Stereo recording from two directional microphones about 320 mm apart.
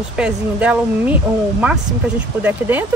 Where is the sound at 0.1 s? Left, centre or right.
Centre.